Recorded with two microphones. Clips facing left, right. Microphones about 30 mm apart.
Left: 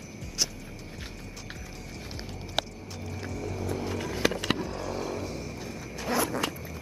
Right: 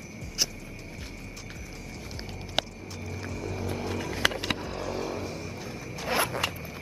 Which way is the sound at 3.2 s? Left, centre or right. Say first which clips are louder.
Even; centre.